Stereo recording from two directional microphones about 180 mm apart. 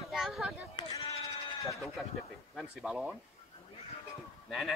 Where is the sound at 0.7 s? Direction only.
30° left (ahead or behind).